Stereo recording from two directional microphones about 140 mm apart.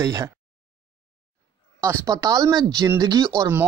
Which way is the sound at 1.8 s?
20° right (ahead or behind).